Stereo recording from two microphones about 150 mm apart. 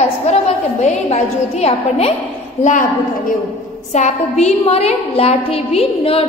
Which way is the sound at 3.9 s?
50° left (ahead or behind).